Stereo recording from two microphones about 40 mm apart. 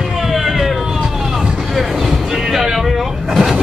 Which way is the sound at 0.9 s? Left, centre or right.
Centre.